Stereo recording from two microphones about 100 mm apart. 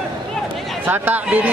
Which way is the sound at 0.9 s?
15° right (ahead or behind).